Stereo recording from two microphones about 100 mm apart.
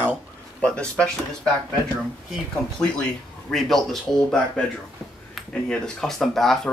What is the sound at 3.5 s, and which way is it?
Speech, 5° left (ahead or behind).